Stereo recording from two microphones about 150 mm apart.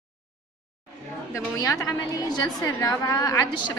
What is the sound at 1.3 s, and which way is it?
A woman's voice, 20° left (ahead or behind).